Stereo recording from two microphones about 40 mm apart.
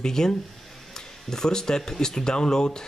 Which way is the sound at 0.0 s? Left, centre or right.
Centre.